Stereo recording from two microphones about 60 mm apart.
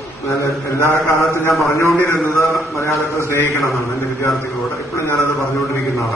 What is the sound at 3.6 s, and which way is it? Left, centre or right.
Speech, centre.